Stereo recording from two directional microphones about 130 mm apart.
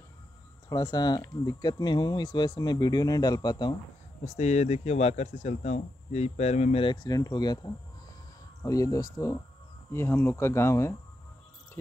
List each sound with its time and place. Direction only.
0.7 s speech: 35° left (ahead or behind)
4.2 s speech: 60° left (ahead or behind); by 11.0 s 20° left (ahead or behind)